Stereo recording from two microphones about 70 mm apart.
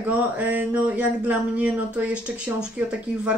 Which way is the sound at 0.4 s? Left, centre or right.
Right.